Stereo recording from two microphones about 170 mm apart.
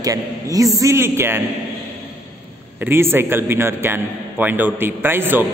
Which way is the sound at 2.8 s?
15° right (ahead or behind).